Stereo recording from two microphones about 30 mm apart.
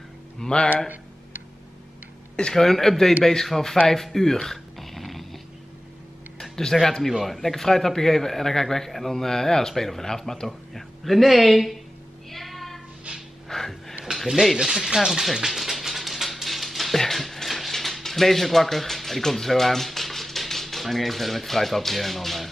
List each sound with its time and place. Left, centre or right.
0.4 s speech: left
2.5 s a man's voice: centre
3.8 s a sound: centre
6.5 s a man's voice: centre
7.1 s a man's voice: centre
12.3 s a sound: centre
14.6 s speech: centre
15.5 s music: centre
17.0 s a sound: centre
18.0 s speech: centre